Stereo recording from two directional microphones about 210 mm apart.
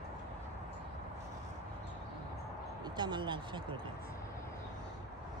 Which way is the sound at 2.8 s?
20° right (ahead or behind).